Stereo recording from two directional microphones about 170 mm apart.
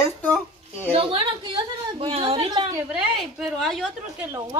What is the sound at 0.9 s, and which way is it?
A woman's voice, 35° right (ahead or behind).